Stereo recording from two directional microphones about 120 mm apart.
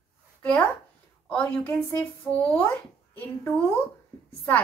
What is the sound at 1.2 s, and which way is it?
A woman's voice, 10° left (ahead or behind).